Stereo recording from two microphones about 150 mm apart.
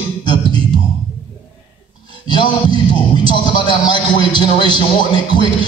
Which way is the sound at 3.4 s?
30° left (ahead or behind).